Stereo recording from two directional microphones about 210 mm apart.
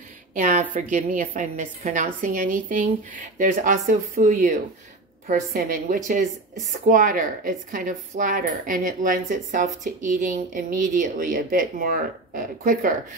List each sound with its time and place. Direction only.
0.3 s a woman's voice: 35° right (ahead or behind)